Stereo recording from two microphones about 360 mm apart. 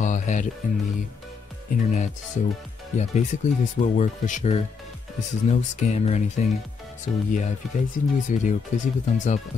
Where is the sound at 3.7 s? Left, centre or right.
Left.